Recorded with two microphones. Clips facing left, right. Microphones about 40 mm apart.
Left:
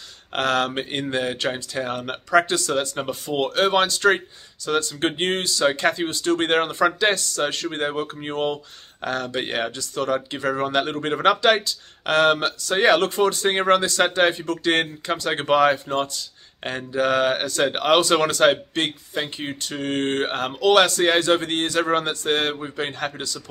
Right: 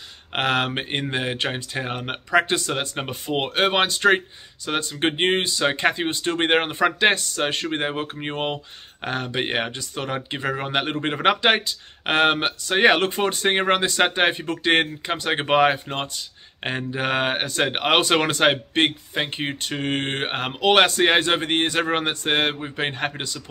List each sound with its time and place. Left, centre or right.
0.3 s speech: right